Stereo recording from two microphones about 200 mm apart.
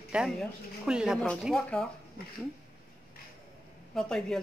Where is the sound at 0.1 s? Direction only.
5° right (ahead or behind).